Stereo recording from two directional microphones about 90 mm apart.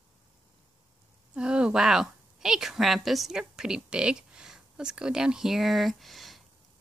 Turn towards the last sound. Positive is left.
turn(degrees=0)  # may be behind; listen again after turning